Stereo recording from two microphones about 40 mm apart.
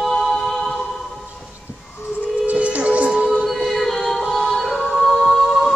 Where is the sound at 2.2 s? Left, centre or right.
Right.